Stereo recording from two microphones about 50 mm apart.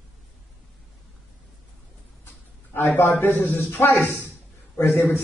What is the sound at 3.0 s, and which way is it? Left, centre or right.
Speech, left.